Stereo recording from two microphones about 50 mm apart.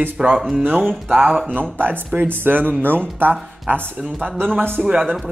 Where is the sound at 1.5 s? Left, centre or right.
Right.